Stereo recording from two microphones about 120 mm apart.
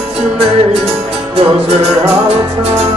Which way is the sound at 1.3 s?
60° right (ahead or behind).